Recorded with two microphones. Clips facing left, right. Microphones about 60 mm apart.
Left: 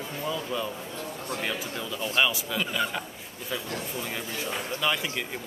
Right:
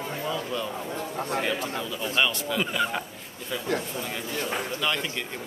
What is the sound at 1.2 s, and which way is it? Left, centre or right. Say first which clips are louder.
Speech: right 6 dB; right.